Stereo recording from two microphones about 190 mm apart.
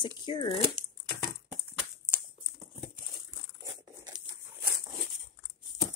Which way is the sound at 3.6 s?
20° right (ahead or behind).